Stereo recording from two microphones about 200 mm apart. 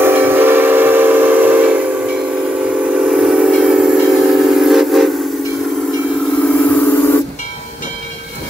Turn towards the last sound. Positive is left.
turn(degrees=5)  # may be behind; listen again after turning